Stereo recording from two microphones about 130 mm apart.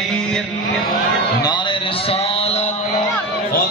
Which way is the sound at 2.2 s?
50° left (ahead or behind).